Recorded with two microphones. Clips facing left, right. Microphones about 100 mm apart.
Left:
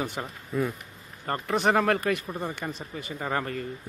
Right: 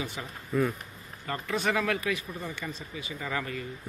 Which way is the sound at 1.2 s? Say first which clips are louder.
Left 5 dB; 45° left (ahead or behind).